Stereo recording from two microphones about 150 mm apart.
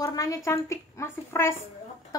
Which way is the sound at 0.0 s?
25° left (ahead or behind).